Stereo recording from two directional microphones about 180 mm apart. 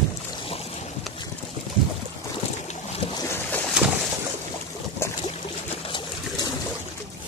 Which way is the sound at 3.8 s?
5° right (ahead or behind).